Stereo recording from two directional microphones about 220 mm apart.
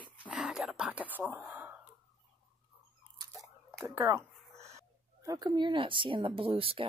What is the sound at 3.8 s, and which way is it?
Speech, 10° right (ahead or behind).